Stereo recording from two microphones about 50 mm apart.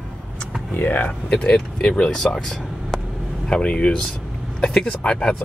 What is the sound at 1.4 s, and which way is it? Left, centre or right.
Speech, centre.